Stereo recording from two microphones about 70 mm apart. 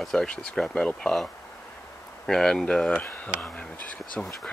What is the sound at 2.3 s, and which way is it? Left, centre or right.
Speech, centre.